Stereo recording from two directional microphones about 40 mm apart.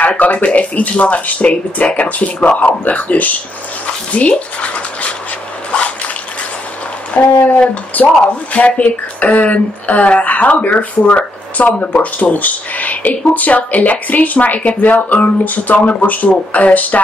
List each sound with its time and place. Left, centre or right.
0.2 s speech: left
7.2 s speech: left
8.0 s speech: left